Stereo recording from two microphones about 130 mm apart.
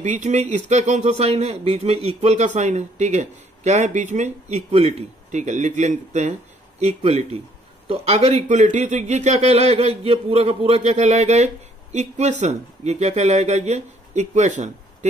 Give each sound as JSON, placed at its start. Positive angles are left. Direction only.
{"t": 0.0, "sound": "a man's voice", "side_deg": -65}